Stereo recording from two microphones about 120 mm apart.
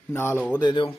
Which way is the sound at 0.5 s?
40° left (ahead or behind).